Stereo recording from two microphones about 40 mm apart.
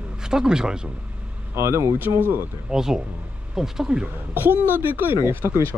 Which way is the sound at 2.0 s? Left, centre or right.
Right.